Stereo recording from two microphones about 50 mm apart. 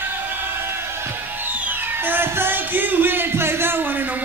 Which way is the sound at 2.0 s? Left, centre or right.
Right.